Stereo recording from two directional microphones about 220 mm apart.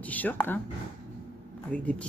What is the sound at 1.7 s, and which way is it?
Speech, 5° left (ahead or behind).